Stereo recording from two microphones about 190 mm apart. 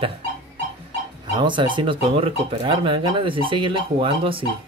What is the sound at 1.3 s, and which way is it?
Speech, 25° right (ahead or behind).